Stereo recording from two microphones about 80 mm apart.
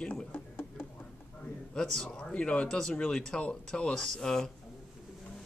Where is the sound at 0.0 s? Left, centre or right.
Centre.